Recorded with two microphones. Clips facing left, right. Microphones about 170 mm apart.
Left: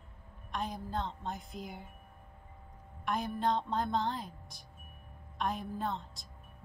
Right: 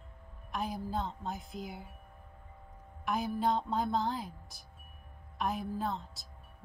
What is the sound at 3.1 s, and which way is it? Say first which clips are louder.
A woman's voice: right 1 dB; 5° right (ahead or behind).